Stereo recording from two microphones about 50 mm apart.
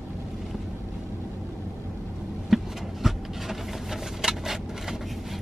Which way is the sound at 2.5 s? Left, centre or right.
Centre.